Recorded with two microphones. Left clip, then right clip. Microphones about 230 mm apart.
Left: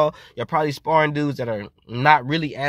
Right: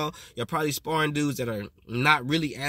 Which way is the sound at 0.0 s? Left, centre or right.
Centre.